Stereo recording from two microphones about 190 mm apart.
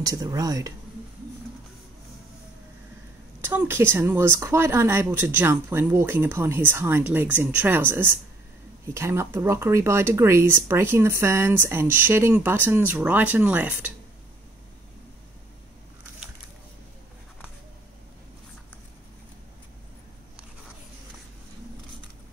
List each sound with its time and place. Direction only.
0.0 s speech: 20° right (ahead or behind)
3.3 s speech: 10° right (ahead or behind)